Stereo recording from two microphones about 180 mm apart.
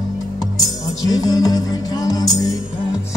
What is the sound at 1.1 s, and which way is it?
Music, 20° left (ahead or behind).